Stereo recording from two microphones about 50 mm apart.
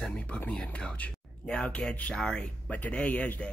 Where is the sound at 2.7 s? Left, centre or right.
Left.